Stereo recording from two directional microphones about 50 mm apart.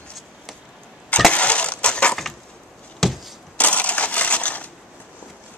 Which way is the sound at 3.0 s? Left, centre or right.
Centre.